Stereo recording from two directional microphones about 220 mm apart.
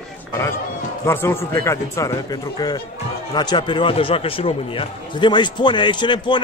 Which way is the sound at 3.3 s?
20° left (ahead or behind).